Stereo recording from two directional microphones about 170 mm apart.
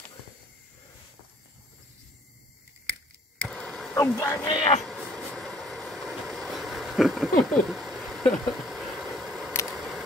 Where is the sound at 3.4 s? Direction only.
Centre (ahead or behind).